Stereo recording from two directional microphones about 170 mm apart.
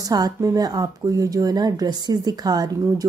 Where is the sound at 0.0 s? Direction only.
20° right (ahead or behind).